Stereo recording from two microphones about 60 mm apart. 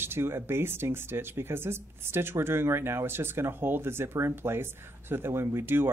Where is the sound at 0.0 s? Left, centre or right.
Right.